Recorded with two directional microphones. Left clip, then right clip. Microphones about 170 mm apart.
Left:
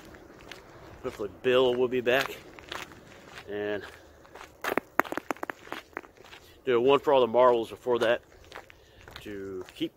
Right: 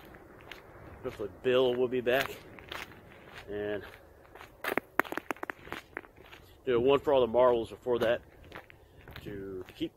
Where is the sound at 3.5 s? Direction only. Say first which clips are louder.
Left 3 dB; 15° right (ahead or behind).